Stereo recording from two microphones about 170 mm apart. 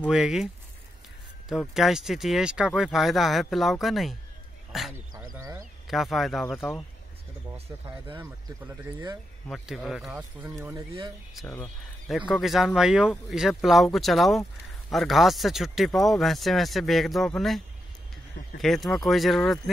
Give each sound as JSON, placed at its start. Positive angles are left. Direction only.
{"t": 0.0, "sound": "speech", "side_deg": -5}
{"t": 1.5, "sound": "speech", "side_deg": 0}
{"t": 5.1, "sound": "speech", "side_deg": -20}
{"t": 5.9, "sound": "speech", "side_deg": 0}
{"t": 8.1, "sound": "speech", "side_deg": -15}
{"t": 9.5, "sound": "speech", "side_deg": 0}
{"t": 10.5, "sound": "speech", "side_deg": -15}
{"t": 12.3, "sound": "speech", "side_deg": 0}
{"t": 18.6, "sound": "speech", "side_deg": 0}